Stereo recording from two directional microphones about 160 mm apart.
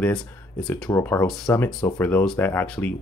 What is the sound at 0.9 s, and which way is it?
Speech, 10° left (ahead or behind).